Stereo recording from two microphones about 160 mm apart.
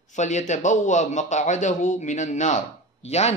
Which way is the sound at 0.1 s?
50° left (ahead or behind).